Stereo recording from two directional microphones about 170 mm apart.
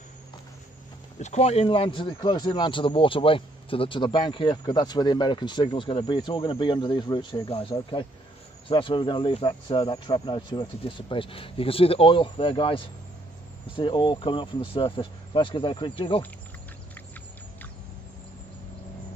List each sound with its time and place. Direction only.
1.2 s speech: 40° left (ahead or behind)